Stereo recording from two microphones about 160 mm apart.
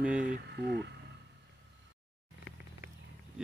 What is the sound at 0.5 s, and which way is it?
Speech, 90° right.